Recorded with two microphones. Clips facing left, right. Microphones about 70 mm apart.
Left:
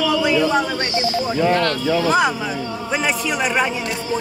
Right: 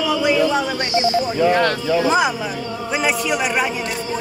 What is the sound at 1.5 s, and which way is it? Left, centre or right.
Speech, centre.